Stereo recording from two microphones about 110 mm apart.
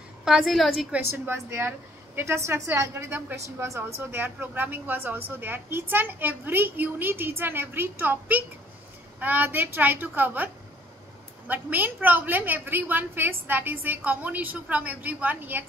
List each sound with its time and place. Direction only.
0.2 s a woman's voice: 5° right (ahead or behind)
1.1 s a woman's voice: 20° right (ahead or behind)